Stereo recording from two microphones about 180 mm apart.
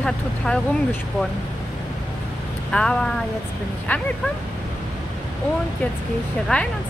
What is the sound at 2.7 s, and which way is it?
Speech, 5° left (ahead or behind).